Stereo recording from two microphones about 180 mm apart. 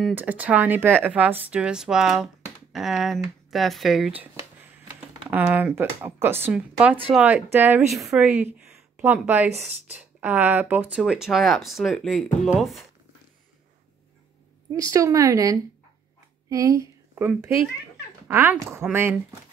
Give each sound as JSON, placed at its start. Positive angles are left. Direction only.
{"t": 0.1, "sound": "speech", "side_deg": -10}
{"t": 5.3, "sound": "speech", "side_deg": -10}
{"t": 8.5, "sound": "a sound", "side_deg": -5}
{"t": 9.7, "sound": "speech", "side_deg": -10}
{"t": 14.9, "sound": "a woman's voice", "side_deg": -20}